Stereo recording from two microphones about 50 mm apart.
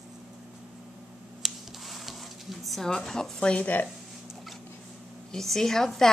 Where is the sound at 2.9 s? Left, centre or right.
Centre.